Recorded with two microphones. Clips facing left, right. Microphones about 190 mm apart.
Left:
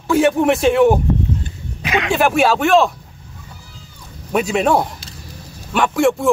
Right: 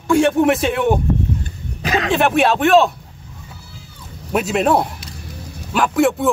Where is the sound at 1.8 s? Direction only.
40° right (ahead or behind).